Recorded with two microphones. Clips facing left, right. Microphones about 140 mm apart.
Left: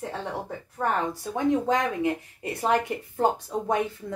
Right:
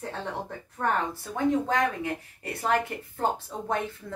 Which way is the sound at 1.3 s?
20° left (ahead or behind).